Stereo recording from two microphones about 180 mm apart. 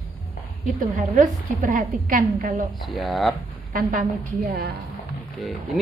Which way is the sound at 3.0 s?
Centre (ahead or behind).